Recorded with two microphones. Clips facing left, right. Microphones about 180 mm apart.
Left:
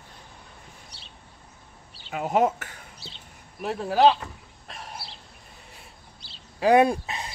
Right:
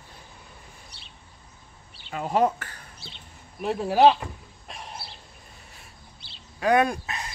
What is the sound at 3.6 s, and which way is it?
Speech, centre (ahead or behind).